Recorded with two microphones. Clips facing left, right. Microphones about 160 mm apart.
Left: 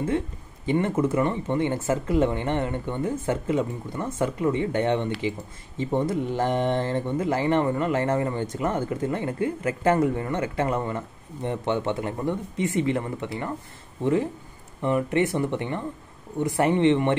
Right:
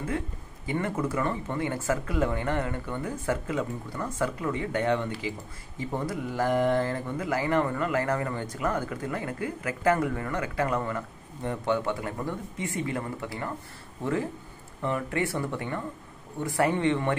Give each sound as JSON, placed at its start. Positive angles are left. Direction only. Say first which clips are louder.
{"t": 0.7, "sound": "speech", "louder": "left 6 dB", "side_deg": 25}
{"t": 14.8, "sound": "speech", "louder": "left 6 dB", "side_deg": 20}